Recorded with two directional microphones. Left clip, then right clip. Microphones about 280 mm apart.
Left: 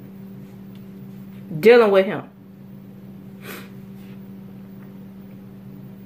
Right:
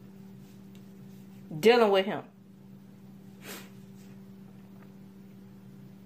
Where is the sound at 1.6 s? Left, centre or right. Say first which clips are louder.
Left 9 dB; right.